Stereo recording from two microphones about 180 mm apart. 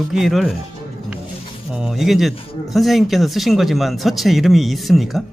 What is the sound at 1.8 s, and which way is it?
A man's voice, centre (ahead or behind).